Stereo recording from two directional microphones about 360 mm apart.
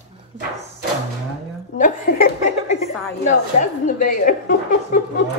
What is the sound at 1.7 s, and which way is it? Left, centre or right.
A woman's voice, left.